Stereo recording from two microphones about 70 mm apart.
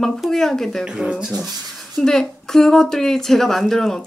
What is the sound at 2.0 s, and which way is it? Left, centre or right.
A woman's voice, centre.